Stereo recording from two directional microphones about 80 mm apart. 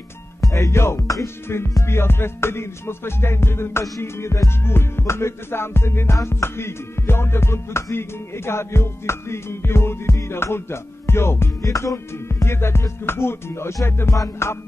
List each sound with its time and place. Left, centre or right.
0.4 s music: left
14.1 s music: left